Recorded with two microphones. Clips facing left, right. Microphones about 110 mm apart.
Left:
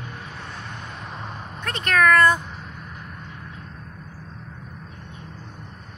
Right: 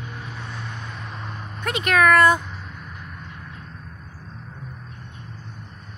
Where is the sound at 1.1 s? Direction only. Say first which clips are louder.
Left 1 dB; 20° left (ahead or behind).